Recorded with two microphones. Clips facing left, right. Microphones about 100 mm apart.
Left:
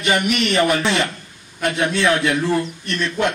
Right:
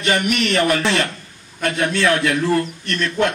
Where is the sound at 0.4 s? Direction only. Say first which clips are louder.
Even; 20° left (ahead or behind).